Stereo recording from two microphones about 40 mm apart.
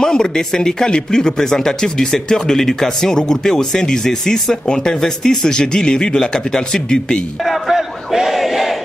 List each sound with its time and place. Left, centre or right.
0.0 s speech: centre
7.4 s battle cry: centre